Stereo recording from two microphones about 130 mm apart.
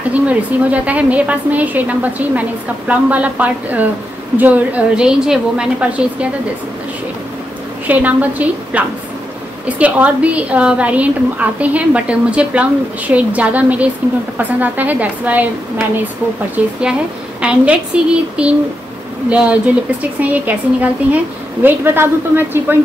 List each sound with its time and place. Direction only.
0.1 s a woman's voice: 10° right (ahead or behind)
7.8 s a woman's voice: 10° right (ahead or behind)
16.6 s a woman's voice: 10° right (ahead or behind)